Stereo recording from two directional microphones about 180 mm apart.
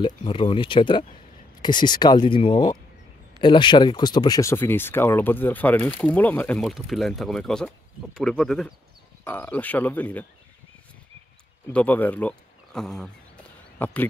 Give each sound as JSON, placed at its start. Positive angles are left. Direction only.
{"t": 0.0, "sound": "speech", "side_deg": 30}
{"t": 11.6, "sound": "speech", "side_deg": 10}